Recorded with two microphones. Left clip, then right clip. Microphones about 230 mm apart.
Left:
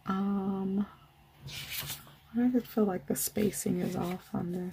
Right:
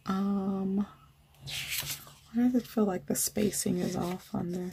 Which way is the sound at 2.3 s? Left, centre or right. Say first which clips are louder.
Right 1 dB; centre.